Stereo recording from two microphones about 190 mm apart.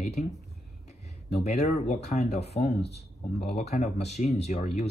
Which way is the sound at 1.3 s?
35° left (ahead or behind).